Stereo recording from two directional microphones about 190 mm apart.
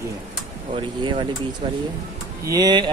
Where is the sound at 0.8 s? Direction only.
25° right (ahead or behind).